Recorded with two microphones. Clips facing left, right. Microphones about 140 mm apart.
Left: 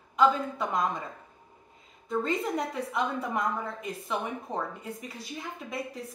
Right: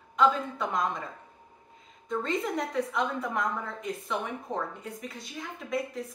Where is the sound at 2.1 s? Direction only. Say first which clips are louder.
Left 1 dB; 5° left (ahead or behind).